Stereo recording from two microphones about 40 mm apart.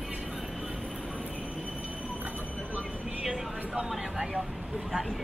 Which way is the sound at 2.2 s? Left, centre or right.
Right.